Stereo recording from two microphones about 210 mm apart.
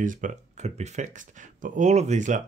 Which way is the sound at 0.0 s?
40° right (ahead or behind).